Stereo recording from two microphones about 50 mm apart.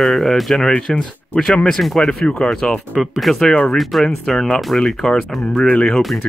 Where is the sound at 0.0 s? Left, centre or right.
Centre.